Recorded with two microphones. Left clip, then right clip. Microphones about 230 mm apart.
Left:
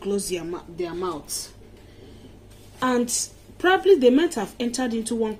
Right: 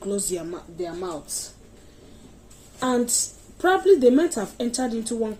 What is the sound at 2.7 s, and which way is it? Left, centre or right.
Speech, centre.